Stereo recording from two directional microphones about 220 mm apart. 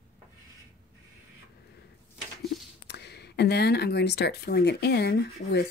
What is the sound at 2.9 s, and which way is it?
Speech, 50° left (ahead or behind).